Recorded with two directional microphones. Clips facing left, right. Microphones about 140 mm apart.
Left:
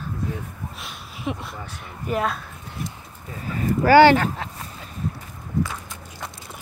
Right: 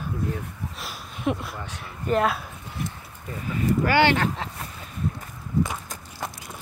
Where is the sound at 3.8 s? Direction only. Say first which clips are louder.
Left 9 dB; 40° left (ahead or behind).